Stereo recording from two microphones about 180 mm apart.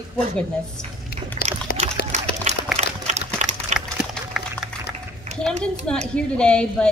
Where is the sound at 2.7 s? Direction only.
40° right (ahead or behind).